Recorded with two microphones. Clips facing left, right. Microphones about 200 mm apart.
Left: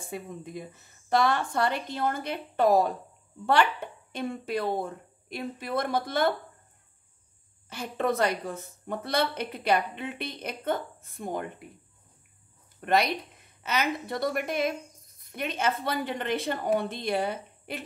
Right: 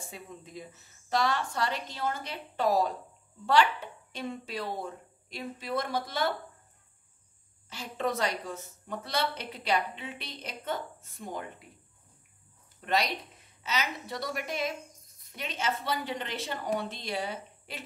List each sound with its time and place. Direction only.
0.1 s a woman's voice: 55° left (ahead or behind)
4.1 s a woman's voice: 55° left (ahead or behind)
7.7 s a woman's voice: 55° left (ahead or behind)
12.8 s a woman's voice: 55° left (ahead or behind)